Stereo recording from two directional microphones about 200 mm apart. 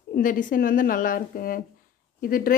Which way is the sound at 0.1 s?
40° left (ahead or behind).